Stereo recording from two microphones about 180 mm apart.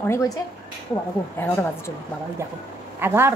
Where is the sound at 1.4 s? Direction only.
10° left (ahead or behind).